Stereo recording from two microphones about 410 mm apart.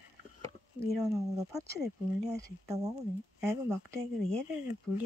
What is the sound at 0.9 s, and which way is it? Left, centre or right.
Speech, centre.